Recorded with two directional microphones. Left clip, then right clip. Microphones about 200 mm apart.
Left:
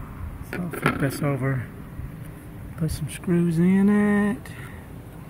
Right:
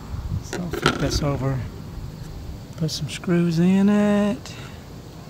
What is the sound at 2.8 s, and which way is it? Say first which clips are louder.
Speech: right 5 dB; 5° right (ahead or behind).